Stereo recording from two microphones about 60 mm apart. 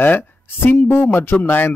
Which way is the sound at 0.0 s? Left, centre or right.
Left.